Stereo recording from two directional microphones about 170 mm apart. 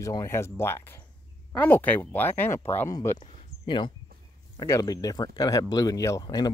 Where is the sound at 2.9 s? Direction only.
25° left (ahead or behind).